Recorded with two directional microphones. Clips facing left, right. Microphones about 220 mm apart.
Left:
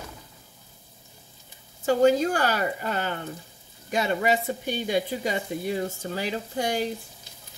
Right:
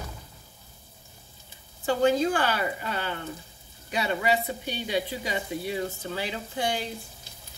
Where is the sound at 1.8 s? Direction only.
45° left (ahead or behind).